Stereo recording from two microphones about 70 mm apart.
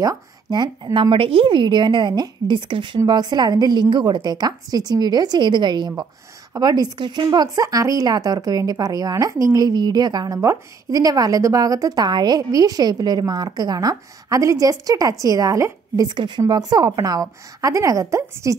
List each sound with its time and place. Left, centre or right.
0.8 s a woman's voice: right
3.1 s a woman's voice: right
6.5 s a woman's voice: right
7.2 s a woman's voice: right
10.9 s a woman's voice: right
12.4 s a woman's voice: right